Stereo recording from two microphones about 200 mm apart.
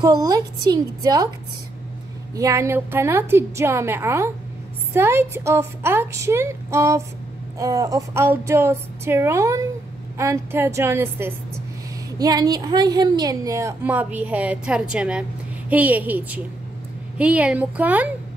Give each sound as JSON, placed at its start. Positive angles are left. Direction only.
{"t": 0.0, "sound": "a woman's voice", "side_deg": -20}
{"t": 2.3, "sound": "a woman's voice", "side_deg": -15}